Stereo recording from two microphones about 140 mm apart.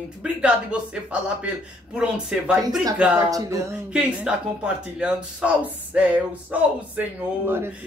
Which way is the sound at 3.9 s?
5° right (ahead or behind).